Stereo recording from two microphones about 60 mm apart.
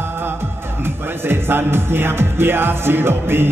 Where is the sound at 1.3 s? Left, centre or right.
Right.